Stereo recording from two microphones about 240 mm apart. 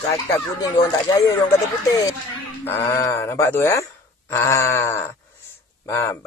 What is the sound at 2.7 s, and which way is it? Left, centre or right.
Speech, centre.